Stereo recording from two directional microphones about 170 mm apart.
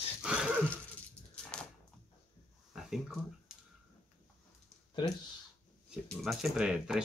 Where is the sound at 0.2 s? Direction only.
5° right (ahead or behind).